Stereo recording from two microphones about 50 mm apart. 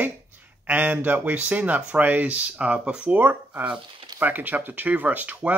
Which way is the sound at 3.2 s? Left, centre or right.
Right.